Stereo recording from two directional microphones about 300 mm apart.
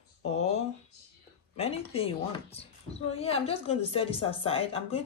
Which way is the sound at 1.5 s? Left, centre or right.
Centre.